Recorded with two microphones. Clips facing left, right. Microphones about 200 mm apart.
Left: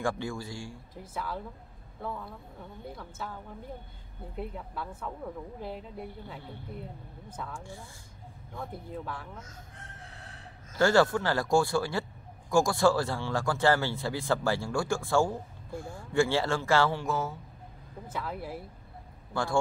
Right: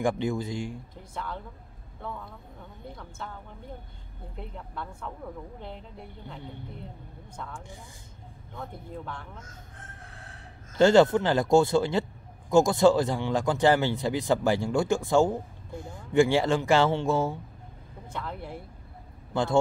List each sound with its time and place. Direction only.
0.0 s speech: 20° right (ahead or behind)
1.1 s speech: 5° left (ahead or behind)
4.4 s speech: 5° left (ahead or behind)
10.8 s speech: 20° right (ahead or behind)
18.0 s speech: 5° left (ahead or behind)
19.3 s speech: 20° right (ahead or behind)